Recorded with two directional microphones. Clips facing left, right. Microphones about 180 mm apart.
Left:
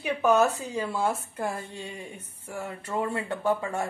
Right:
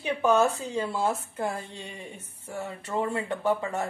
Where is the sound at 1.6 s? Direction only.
20° right (ahead or behind).